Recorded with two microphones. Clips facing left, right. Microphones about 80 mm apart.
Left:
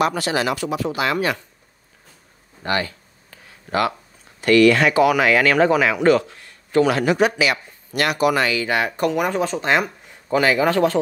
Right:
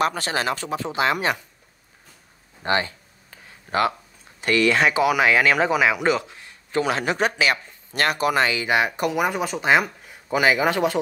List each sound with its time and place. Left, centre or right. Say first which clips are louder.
0.0 s speech: left 3 dB; right; by 1.4 s centre
2.6 s a sound: even; right
4.4 s speech: left 5 dB; right; by 10.4 s centre
10.4 s speech: left 2 dB; centre